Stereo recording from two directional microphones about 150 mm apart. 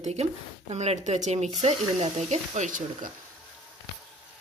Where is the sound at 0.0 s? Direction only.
45° right (ahead or behind).